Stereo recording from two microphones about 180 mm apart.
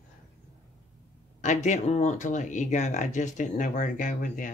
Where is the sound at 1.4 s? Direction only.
40° left (ahead or behind).